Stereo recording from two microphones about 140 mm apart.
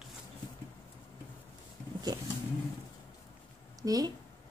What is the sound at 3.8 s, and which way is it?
Speech, 25° right (ahead or behind).